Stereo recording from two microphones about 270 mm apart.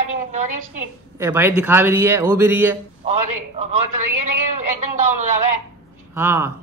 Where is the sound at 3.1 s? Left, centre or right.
Right.